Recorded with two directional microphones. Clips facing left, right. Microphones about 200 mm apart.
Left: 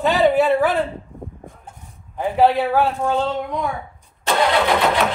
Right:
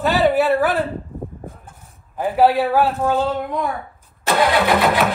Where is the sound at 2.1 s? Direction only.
5° right (ahead or behind).